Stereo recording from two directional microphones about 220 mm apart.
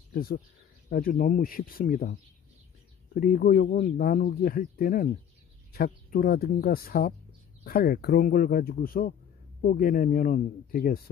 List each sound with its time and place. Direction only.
0.1 s speech: 45° left (ahead or behind)
3.2 s speech: 40° left (ahead or behind)